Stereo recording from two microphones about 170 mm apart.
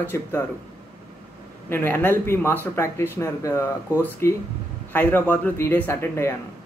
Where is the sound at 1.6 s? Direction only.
15° left (ahead or behind).